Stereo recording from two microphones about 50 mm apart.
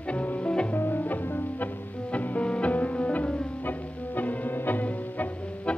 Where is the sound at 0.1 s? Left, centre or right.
Left.